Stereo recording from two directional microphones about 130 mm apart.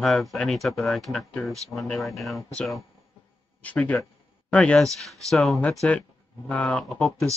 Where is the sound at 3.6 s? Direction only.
10° left (ahead or behind).